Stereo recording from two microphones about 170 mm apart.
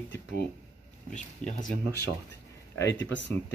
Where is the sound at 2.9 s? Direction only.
90° left.